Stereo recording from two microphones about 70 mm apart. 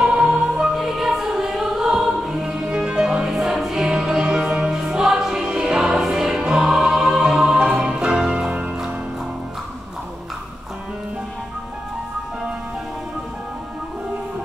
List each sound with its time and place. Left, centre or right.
0.0 s music: centre